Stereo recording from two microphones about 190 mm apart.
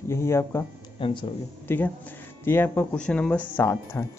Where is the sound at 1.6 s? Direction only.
10° left (ahead or behind).